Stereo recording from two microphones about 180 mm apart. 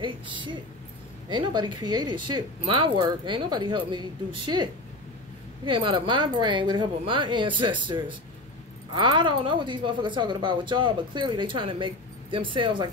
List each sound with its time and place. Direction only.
0.0 s speech: 25° right (ahead or behind)
5.7 s speech: 25° right (ahead or behind)